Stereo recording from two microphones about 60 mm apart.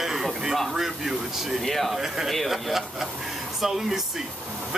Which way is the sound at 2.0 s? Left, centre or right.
Centre.